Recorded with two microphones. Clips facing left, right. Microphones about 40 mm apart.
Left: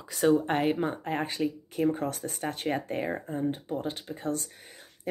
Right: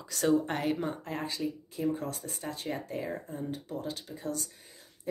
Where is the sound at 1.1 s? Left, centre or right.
Left.